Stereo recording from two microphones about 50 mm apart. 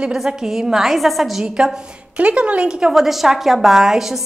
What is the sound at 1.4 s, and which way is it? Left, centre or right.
Speech, centre.